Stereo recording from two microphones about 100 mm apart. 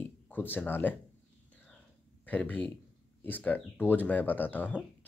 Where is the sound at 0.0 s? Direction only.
20° left (ahead or behind).